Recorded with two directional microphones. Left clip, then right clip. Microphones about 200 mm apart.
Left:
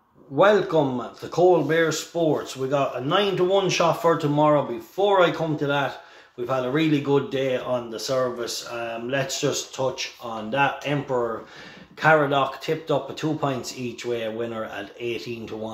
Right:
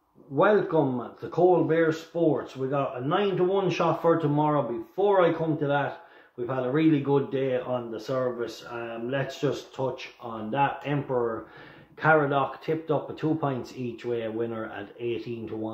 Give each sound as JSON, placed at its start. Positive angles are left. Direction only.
{"t": 0.4, "sound": "speech", "side_deg": 5}